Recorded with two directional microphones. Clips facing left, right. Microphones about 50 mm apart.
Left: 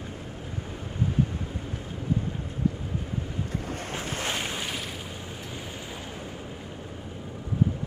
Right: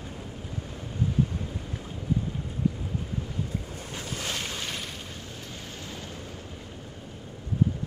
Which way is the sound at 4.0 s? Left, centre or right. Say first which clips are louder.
Left 2 dB; left.